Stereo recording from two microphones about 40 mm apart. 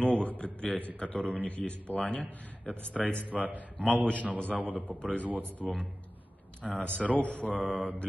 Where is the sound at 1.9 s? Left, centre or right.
Left.